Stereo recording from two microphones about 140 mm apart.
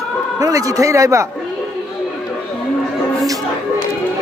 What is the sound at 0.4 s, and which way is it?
Speech, 25° right (ahead or behind).